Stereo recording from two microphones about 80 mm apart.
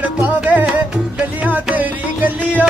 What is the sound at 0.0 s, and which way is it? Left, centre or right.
Music, centre.